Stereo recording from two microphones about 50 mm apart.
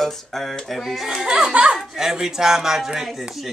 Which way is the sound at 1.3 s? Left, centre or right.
Right.